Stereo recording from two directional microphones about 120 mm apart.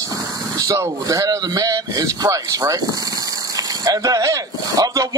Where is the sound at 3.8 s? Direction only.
30° right (ahead or behind).